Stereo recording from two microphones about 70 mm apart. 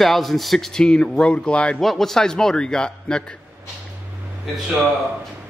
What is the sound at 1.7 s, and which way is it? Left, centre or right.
Speech, centre.